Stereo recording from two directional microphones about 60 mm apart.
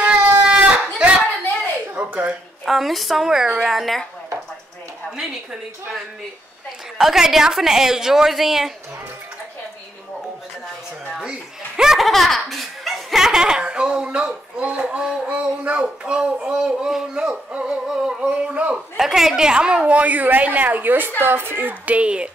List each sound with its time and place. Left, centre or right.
0.0 s a sound: centre
2.6 s a woman's voice: centre
5.1 s a woman's voice: centre
11.1 s a woman's voice: centre
18.9 s a woman's voice: centre